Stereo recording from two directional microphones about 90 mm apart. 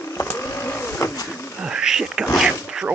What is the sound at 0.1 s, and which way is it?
Vehicle, 25° left (ahead or behind).